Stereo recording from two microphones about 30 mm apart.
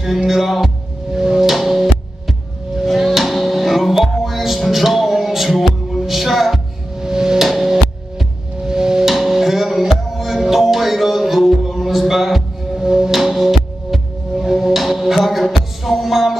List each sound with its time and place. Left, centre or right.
0.3 s music: centre
1.1 s music: centre
1.5 s music: centre
7.0 s music: right
7.3 s music: centre
8.6 s music: right
9.1 s music: centre
12.8 s music: centre
13.1 s music: centre